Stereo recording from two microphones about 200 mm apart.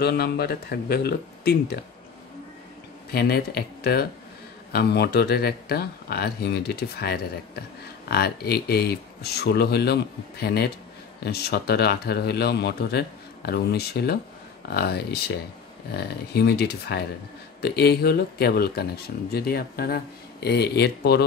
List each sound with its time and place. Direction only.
0.0 s speech: 50° left (ahead or behind)
3.1 s speech: 50° left (ahead or behind)